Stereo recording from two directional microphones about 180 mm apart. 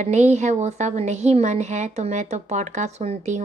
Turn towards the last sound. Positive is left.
turn(degrees=-40)  # may be behind; listen again after turning